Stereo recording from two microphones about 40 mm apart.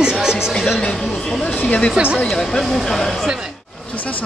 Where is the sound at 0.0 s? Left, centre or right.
Centre.